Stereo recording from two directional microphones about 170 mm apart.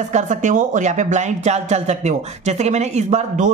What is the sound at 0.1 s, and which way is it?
A woman's voice, 45° right (ahead or behind).